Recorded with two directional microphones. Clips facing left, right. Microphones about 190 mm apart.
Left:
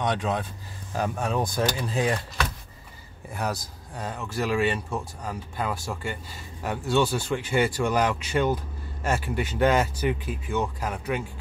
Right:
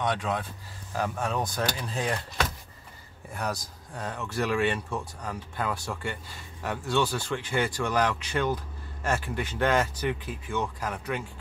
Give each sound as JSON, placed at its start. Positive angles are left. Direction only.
{"t": 0.0, "sound": "speech", "side_deg": 20}
{"t": 3.3, "sound": "speech", "side_deg": 5}